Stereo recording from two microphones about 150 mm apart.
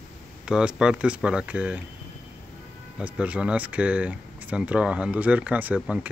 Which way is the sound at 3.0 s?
10° right (ahead or behind).